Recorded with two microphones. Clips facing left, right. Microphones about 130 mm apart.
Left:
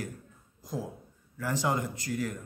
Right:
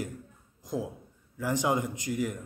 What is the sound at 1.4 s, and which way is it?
Speech, 15° right (ahead or behind).